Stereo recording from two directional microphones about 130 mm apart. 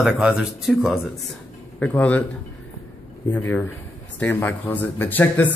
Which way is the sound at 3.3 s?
15° left (ahead or behind).